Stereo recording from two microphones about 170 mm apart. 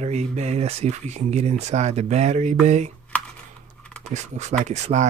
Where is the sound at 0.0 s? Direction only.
40° right (ahead or behind).